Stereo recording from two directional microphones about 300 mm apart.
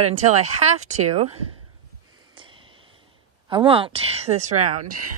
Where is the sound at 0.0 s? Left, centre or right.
Right.